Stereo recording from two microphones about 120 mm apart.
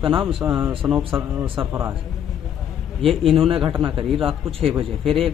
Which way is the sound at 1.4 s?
50° right (ahead or behind).